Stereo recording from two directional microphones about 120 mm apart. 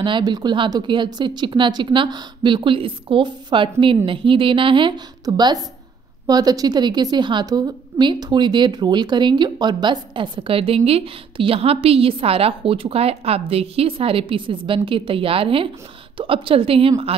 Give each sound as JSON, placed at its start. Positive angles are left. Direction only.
{"t": 0.0, "sound": "a woman's voice", "side_deg": -40}